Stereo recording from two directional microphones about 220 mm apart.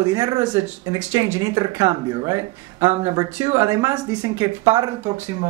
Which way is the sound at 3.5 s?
15° right (ahead or behind).